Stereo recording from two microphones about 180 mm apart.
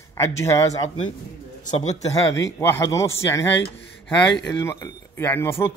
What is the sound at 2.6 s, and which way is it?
Speech, 15° left (ahead or behind).